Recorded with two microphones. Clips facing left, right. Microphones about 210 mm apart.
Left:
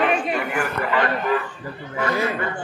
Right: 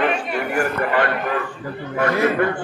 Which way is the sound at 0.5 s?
50° right (ahead or behind).